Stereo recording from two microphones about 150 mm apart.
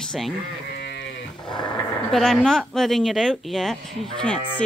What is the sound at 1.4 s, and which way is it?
Speech, 30° left (ahead or behind).